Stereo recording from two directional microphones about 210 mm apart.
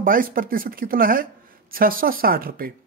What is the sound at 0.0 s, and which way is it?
A woman's voice, 40° right (ahead or behind).